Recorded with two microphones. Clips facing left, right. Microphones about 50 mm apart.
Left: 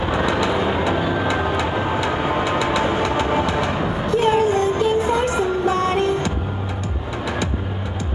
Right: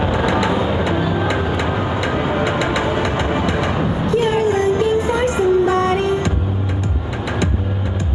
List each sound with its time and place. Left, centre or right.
0.3 s vehicle: right